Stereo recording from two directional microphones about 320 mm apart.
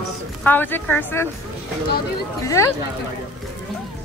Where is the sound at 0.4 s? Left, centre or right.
Centre.